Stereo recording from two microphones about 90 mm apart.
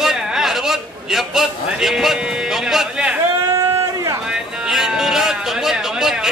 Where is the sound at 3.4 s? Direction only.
35° right (ahead or behind).